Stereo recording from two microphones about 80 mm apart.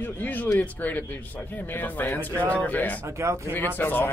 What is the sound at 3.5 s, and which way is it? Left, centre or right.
Speech, left.